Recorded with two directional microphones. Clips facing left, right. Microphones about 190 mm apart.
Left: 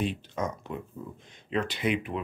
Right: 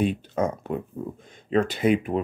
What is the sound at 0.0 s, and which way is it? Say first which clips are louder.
Speech: right 7 dB; 50° right (ahead or behind).